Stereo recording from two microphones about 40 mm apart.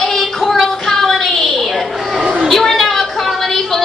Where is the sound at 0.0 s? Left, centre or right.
Centre.